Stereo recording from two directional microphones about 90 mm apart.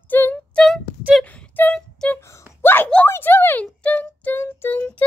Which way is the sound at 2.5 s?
25° left (ahead or behind).